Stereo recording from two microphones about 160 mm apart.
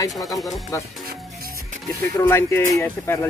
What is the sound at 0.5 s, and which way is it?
Speech, 20° left (ahead or behind).